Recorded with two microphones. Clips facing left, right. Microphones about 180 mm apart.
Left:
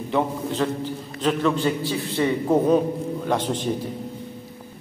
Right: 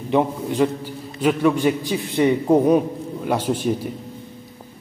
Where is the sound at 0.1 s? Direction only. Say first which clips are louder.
Right 4 dB; 15° right (ahead or behind).